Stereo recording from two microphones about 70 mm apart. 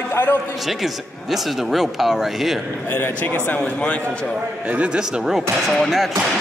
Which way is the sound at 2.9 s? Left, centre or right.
Left.